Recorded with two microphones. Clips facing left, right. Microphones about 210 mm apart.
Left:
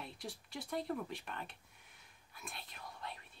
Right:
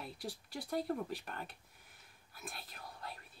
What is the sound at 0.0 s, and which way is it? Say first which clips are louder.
Speech: right 2 dB; centre (ahead or behind).